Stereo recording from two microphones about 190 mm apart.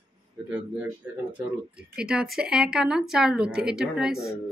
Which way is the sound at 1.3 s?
5° right (ahead or behind).